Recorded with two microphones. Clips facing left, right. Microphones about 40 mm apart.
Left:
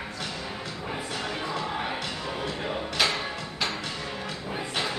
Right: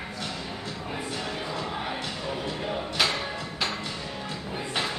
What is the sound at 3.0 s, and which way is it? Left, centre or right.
Music, centre.